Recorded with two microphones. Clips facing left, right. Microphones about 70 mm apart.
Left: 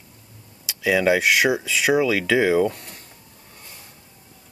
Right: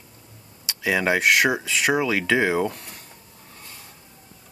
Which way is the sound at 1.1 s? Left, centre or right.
Centre.